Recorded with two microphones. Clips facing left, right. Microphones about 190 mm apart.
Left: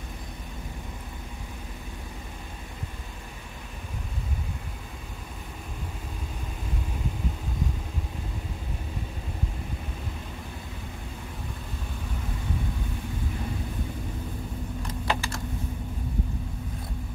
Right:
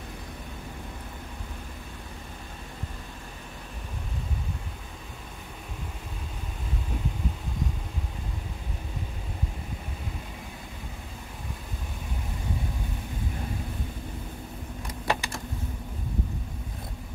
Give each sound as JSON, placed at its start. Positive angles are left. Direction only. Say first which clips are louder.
{"t": 14.9, "sound": "typing", "louder": "right 1 dB", "side_deg": -15}